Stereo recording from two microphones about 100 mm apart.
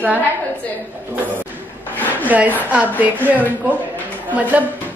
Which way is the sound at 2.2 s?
15° right (ahead or behind).